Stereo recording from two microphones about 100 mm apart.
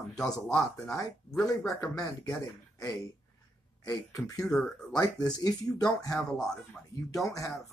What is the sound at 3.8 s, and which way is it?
Speech, 35° left (ahead or behind).